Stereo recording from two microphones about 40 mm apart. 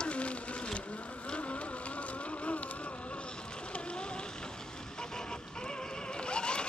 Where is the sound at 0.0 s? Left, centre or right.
Left.